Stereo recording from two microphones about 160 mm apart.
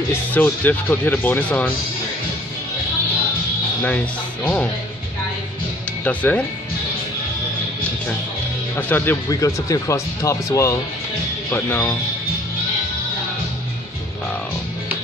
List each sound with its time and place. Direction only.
0.3 s speech: 10° left (ahead or behind)
3.8 s speech: 10° left (ahead or behind)
6.0 s speech: 10° left (ahead or behind)
8.7 s speech: 10° left (ahead or behind)